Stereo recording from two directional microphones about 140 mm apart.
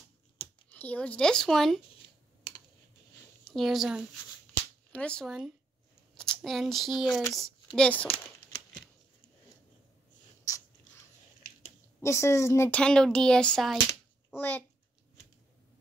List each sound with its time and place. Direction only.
0.7 s speech: 10° left (ahead or behind)
3.4 s a woman's voice: centre (ahead or behind)
4.6 s cap gun: 10° left (ahead or behind)
6.1 s speech: 5° left (ahead or behind)
12.0 s a woman's voice: 20° left (ahead or behind)
12.7 s a child's voice: 5° left (ahead or behind)